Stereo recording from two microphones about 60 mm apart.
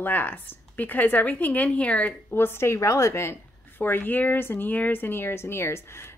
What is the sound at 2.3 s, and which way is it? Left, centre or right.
A woman's voice, left.